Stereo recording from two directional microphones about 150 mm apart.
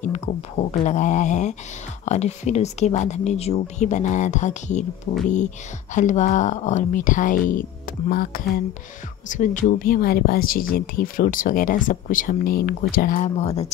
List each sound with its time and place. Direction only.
0.0 s speech: 50° left (ahead or behind)
5.9 s speech: 55° left (ahead or behind)
8.1 s speech: 80° left
9.3 s speech: 60° left (ahead or behind)